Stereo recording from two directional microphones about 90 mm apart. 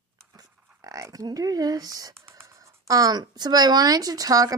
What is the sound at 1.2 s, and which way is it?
A woman's voice, 40° right (ahead or behind).